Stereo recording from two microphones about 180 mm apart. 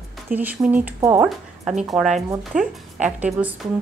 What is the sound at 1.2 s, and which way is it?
A woman's voice, 5° right (ahead or behind).